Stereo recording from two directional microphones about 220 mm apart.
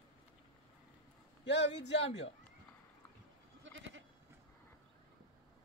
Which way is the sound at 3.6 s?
60° right (ahead or behind).